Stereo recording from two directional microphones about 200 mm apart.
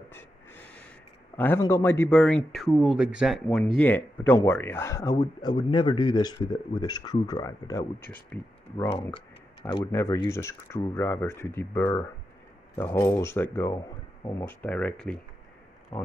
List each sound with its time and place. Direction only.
1.3 s speech: 10° left (ahead or behind)
9.7 s speech: 15° left (ahead or behind)